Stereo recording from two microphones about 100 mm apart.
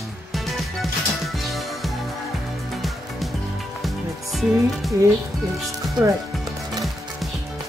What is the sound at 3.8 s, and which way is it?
Music, centre (ahead or behind).